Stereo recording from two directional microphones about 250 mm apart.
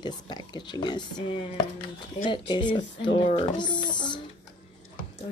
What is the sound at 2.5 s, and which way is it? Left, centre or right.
Speech, centre.